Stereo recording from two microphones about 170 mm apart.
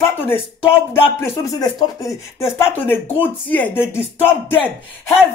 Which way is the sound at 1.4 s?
20° left (ahead or behind).